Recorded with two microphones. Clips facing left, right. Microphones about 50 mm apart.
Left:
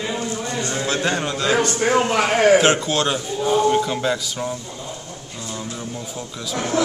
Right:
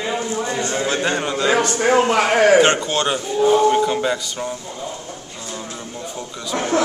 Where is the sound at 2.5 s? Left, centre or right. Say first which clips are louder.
Right 2 dB; centre.